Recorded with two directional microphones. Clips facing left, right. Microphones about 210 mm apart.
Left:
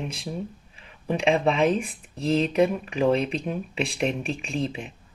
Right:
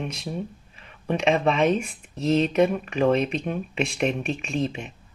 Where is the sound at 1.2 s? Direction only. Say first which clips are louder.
Even; 30° left (ahead or behind).